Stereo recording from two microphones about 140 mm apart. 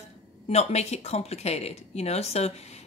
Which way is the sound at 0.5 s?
50° left (ahead or behind).